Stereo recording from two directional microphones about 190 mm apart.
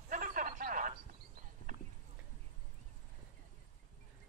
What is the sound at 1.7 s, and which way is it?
Clip-clop, 40° right (ahead or behind).